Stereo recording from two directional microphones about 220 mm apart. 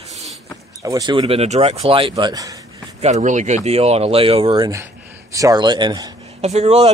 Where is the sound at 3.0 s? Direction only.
30° right (ahead or behind).